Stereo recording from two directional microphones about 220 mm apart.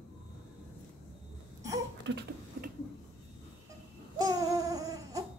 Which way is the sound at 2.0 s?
50° right (ahead or behind).